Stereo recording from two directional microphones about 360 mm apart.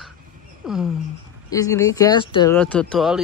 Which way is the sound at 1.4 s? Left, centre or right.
Centre.